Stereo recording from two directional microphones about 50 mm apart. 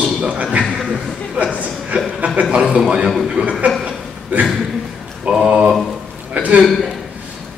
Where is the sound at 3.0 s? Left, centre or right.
Centre.